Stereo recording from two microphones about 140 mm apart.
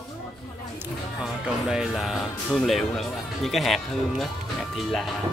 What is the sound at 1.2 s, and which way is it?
Speech, 5° right (ahead or behind).